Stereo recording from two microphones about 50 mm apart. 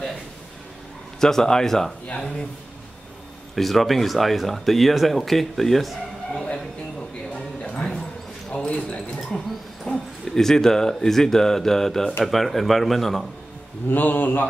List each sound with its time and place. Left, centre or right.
1.2 s speech: centre
2.0 s speech: left
3.5 s speech: centre
7.6 s a sound: centre
9.9 s speech: centre
13.8 s speech: left